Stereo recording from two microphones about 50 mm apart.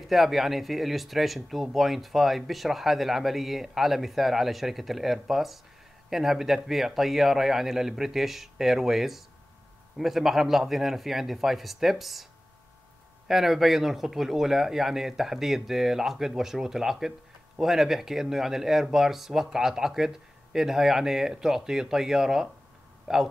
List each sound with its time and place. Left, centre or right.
0.0 s speech: centre
13.3 s speech: centre